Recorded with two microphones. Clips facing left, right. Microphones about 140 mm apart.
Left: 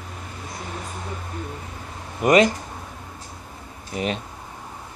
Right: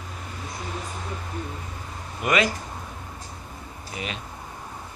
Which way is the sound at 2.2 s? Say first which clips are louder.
Left 7 dB; 40° left (ahead or behind).